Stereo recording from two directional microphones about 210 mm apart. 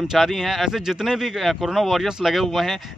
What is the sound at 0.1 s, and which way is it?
Speech, centre (ahead or behind).